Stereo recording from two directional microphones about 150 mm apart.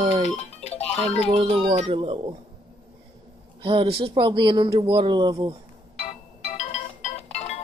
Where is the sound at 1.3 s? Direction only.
45° right (ahead or behind).